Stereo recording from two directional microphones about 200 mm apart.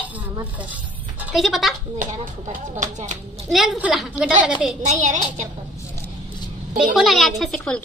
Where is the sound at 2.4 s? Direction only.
40° right (ahead or behind).